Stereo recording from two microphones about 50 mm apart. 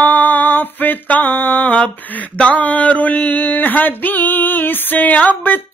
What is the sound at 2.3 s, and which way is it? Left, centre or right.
Female singing, left.